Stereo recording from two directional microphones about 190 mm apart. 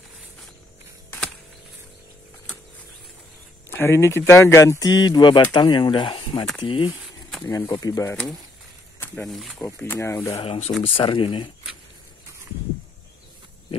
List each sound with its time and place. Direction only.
3.7 s speech: 15° left (ahead or behind)
9.0 s wild animals: 10° left (ahead or behind)
9.3 s speech: centre (ahead or behind)
9.6 s speech: 15° left (ahead or behind)
10.4 s speech: 30° left (ahead or behind)